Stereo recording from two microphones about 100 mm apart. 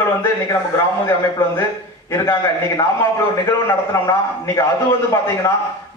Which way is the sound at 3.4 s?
30° left (ahead or behind).